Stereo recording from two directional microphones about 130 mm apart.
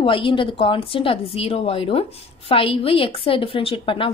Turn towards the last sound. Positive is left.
turn(degrees=40)  # may be behind; listen again after turning